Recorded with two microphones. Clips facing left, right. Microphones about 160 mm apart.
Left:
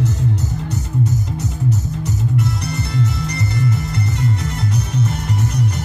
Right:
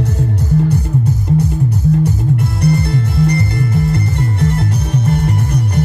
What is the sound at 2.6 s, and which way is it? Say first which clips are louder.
Music: right 7 dB; 55° right (ahead or behind).